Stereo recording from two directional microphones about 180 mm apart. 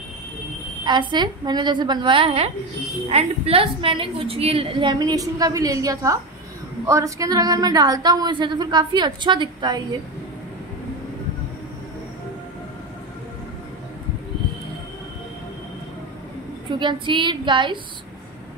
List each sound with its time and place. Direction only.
0.8 s a woman's voice: 25° right (ahead or behind)
16.7 s a woman's voice: 25° right (ahead or behind)